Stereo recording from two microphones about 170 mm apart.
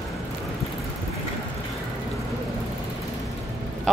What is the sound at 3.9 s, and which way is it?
Speech, centre (ahead or behind).